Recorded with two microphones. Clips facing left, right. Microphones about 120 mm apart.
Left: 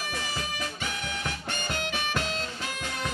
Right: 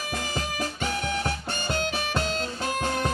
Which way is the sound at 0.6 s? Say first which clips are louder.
Right 5 dB; 35° right (ahead or behind).